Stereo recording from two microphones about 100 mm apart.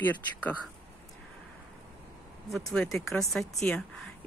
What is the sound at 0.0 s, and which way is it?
Speech, 20° left (ahead or behind).